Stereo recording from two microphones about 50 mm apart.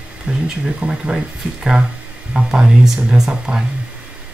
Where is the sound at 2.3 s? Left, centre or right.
Centre.